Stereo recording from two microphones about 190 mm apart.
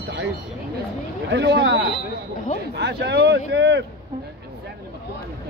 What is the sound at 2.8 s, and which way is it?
Speech, 60° right (ahead or behind).